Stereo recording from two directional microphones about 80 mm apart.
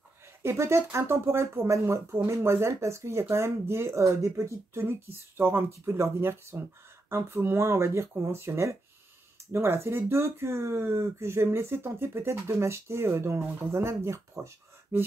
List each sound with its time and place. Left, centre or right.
0.4 s speech: right